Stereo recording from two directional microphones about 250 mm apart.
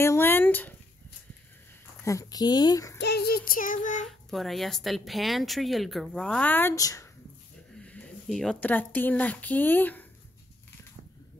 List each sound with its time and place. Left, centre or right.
0.0 s a sound: centre
2.0 s speech: centre
3.0 s child singing: left
4.3 s a woman's voice: centre